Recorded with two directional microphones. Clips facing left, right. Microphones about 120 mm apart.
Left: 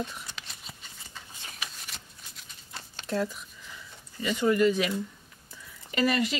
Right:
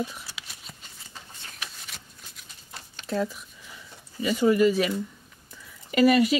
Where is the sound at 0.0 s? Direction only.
5° right (ahead or behind).